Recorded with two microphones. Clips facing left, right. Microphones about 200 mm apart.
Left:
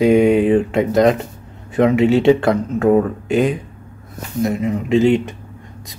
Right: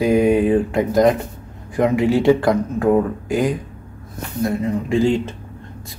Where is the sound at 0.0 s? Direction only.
25° left (ahead or behind).